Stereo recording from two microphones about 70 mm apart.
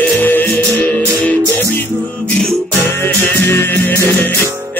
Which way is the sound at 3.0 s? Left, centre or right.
Left.